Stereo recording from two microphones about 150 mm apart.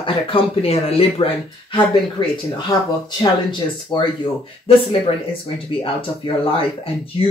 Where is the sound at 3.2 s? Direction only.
30° left (ahead or behind).